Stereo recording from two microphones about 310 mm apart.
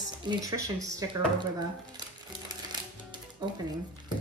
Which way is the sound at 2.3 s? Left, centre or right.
Centre.